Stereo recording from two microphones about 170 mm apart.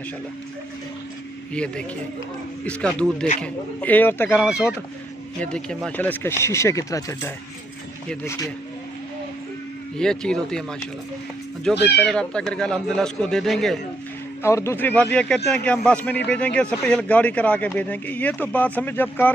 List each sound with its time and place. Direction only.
1.5 s speech: 5° left (ahead or behind)
5.4 s speech: 5° left (ahead or behind)
9.9 s speech: 5° left (ahead or behind)
11.8 s speech: 5° left (ahead or behind)
14.4 s speech: 15° left (ahead or behind)